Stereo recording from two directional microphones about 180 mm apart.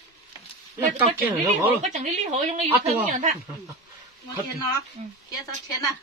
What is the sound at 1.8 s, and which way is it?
A woman's voice, 40° right (ahead or behind).